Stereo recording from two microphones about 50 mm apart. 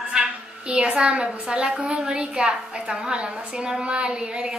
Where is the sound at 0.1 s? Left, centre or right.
Centre.